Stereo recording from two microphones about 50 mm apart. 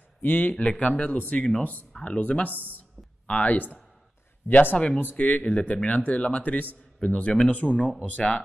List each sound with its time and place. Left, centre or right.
0.2 s speech: left
1.6 s speech: left
1.9 s speech: centre
2.1 s speech: left
3.5 s speech: left
4.7 s speech: centre
7.9 s speech: centre